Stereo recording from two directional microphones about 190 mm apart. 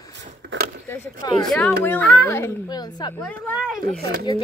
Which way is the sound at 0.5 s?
75° right (ahead or behind).